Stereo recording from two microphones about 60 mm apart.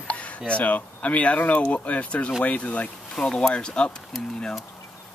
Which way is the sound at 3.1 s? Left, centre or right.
Centre.